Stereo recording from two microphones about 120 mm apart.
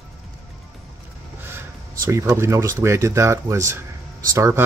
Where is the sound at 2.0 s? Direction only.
25° right (ahead or behind).